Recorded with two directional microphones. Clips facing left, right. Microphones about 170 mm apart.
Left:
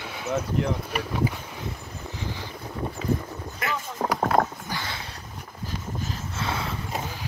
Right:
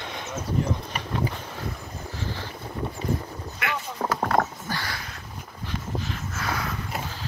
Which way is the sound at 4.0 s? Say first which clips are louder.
Left 1 dB; 5° left (ahead or behind).